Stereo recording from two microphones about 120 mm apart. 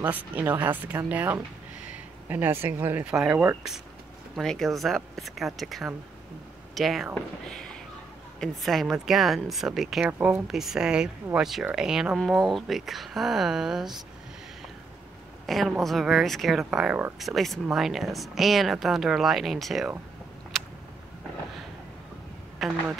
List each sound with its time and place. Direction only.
0.0 s speech: 15° right (ahead or behind)
3.1 s speech: 5° right (ahead or behind)
4.4 s speech: 5° left (ahead or behind)
7.4 s a sound: 5° left (ahead or behind)
8.4 s speech: centre (ahead or behind)
10.0 s speech: 15° right (ahead or behind)
10.5 s speech: 5° right (ahead or behind)
15.4 s speech: centre (ahead or behind)
20.5 s a sound: 5° left (ahead or behind)
22.6 s speech: centre (ahead or behind)